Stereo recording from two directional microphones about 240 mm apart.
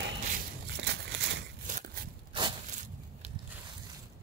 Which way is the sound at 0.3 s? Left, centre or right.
Right.